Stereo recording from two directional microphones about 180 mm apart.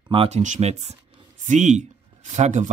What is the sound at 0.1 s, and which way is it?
Speech, 30° right (ahead or behind).